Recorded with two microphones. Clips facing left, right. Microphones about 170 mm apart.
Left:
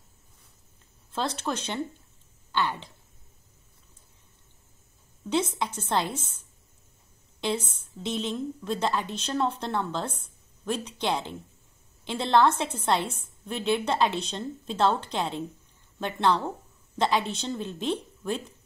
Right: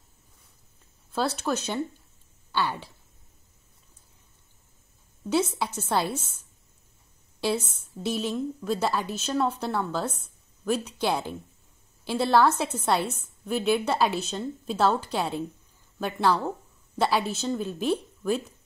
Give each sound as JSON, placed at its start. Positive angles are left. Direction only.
{"t": 1.4, "sound": "a woman's voice", "side_deg": -10}
{"t": 5.6, "sound": "a woman's voice", "side_deg": -10}